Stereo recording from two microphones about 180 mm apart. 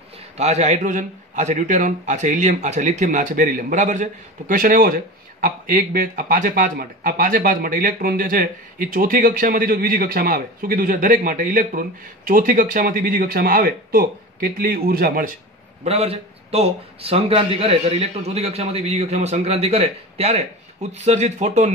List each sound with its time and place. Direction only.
0.4 s a man's voice: 40° right (ahead or behind)
15.8 s speech: 35° right (ahead or behind)